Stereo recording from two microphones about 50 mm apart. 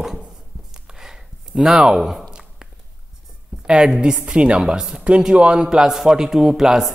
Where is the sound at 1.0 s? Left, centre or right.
Centre.